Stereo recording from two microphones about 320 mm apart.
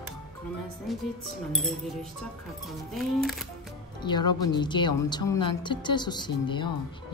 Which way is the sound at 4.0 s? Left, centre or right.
Centre.